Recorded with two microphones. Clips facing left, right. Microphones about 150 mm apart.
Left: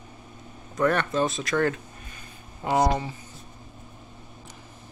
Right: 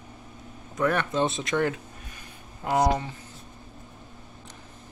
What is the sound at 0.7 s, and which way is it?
Speech, 10° right (ahead or behind).